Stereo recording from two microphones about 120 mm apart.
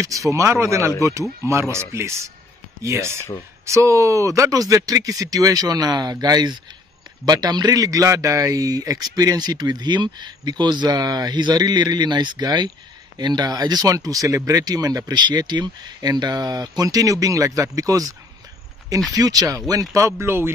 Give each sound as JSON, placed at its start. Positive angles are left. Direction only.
{"t": 0.3, "sound": "a man's voice", "side_deg": -25}
{"t": 19.1, "sound": "speech", "side_deg": -30}